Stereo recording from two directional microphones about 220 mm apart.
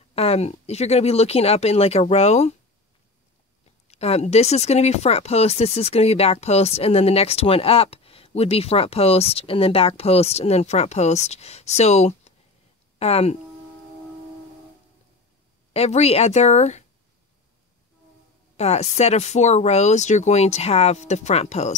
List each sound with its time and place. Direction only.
0.1 s speech: 30° left (ahead or behind)
3.8 s speech: 30° left (ahead or behind)
15.7 s speech: 30° left (ahead or behind)
18.6 s speech: 30° left (ahead or behind)